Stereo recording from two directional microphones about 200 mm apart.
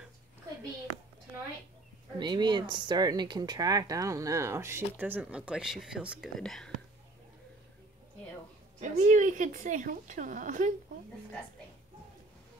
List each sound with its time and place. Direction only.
2.1 s speech: 20° right (ahead or behind); by 6.7 s centre (ahead or behind)
8.7 s a woman's voice: 35° right (ahead or behind)